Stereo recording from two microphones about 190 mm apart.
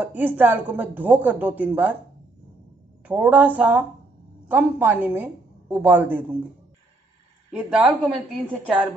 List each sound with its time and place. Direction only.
0.0 s a woman's voice: 10° right (ahead or behind)
3.1 s a woman's voice: 10° right (ahead or behind)
7.5 s a woman's voice: 5° right (ahead or behind)